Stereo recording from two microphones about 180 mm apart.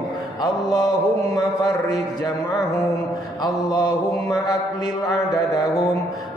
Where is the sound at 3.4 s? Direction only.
20° left (ahead or behind).